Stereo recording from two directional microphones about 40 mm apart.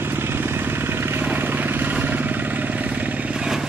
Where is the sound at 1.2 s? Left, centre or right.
Right.